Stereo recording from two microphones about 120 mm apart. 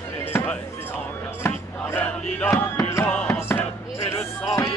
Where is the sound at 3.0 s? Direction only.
10° left (ahead or behind).